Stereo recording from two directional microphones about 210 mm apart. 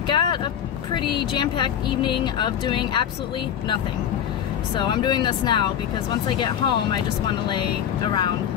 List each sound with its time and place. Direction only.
0.1 s vehicle: 20° left (ahead or behind)
0.9 s speech: 20° left (ahead or behind)
4.7 s speech: 20° left (ahead or behind)